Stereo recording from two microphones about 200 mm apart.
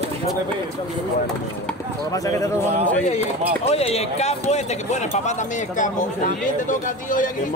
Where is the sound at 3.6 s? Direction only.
30° left (ahead or behind).